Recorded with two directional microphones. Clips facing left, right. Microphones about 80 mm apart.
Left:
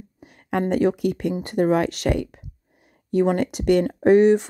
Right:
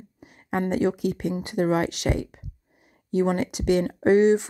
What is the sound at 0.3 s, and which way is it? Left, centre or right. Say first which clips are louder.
Speech: left 3 dB; left.